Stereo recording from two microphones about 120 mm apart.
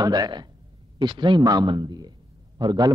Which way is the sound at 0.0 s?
35° right (ahead or behind).